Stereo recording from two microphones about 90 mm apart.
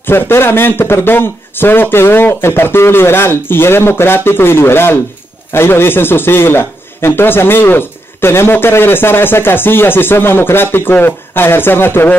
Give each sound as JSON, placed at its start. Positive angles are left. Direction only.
{"t": 0.0, "sound": "a man's voice", "side_deg": 25}